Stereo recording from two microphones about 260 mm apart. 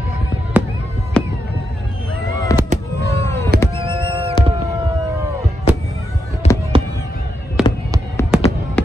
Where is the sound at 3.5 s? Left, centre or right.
Right.